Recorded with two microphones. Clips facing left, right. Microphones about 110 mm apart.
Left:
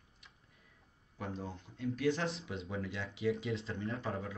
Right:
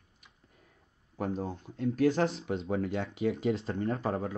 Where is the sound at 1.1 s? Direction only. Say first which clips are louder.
Right 8 dB; 45° right (ahead or behind).